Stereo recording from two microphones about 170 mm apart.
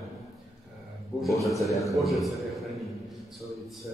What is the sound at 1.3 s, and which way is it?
Speech, 20° left (ahead or behind).